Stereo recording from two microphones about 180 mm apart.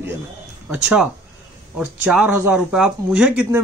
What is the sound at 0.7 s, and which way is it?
Speech, 5° right (ahead or behind).